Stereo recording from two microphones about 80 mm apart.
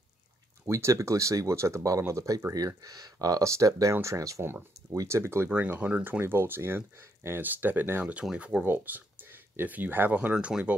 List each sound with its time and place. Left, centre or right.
0.7 s speech: right
4.4 s speech: right
5.5 s speech: right
6.0 s speech: right
8.1 s speech: centre
8.6 s speech: right